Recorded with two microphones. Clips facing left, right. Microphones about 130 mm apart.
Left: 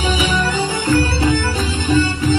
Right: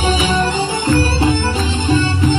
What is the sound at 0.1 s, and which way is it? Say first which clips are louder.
Music: right 3 dB; 30° right (ahead or behind).